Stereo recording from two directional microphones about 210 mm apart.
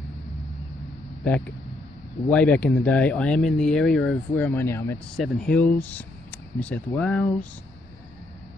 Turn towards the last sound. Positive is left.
turn(degrees=5)  # may be behind; listen again after turning